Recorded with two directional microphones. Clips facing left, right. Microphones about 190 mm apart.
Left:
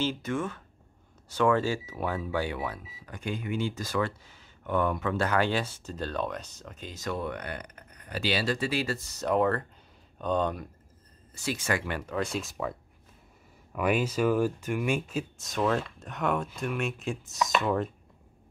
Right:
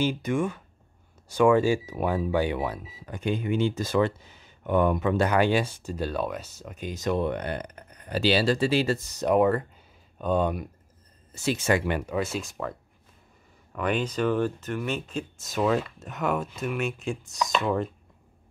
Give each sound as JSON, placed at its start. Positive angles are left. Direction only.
{"t": 0.0, "sound": "speech", "side_deg": -15}
{"t": 11.3, "sound": "speech", "side_deg": -25}
{"t": 12.2, "sound": "speech", "side_deg": 0}
{"t": 13.7, "sound": "speech", "side_deg": 5}